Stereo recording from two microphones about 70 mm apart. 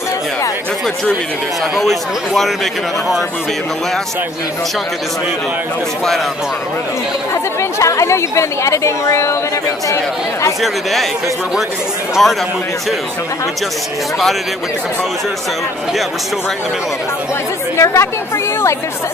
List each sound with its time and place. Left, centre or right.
1.8 s a man's voice: centre
7.8 s a woman's voice: left
10.6 s a man's voice: centre
12.2 s a man's voice: centre
17.7 s a woman's voice: left